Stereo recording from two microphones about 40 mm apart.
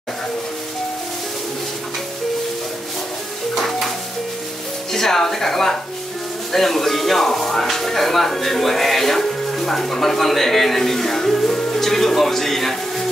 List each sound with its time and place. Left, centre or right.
3.5 s music: centre
4.9 s speech: centre